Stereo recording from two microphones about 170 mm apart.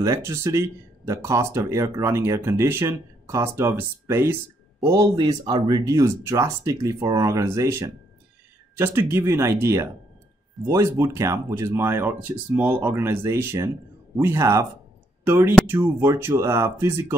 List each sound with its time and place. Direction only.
0.0 s speech: 15° right (ahead or behind)